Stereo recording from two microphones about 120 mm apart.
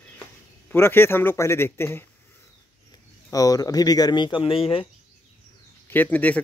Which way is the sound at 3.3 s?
30° left (ahead or behind).